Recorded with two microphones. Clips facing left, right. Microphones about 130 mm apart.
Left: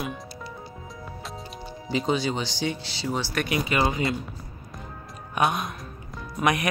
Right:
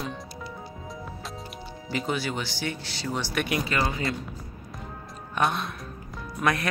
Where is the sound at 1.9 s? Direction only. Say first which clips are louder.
Left 4 dB; 20° left (ahead or behind).